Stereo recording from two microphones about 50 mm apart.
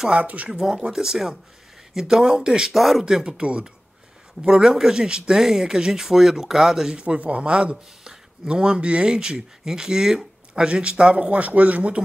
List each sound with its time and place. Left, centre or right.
0.1 s speech: right
0.5 s speech: centre
2.7 s speech: centre
3.1 s speech: centre
7.0 s speech: right